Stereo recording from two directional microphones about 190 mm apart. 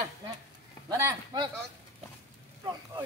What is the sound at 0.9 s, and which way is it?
Speech, 20° right (ahead or behind).